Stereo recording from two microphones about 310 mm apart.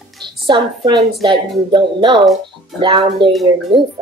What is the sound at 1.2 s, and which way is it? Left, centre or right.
A woman's voice, centre.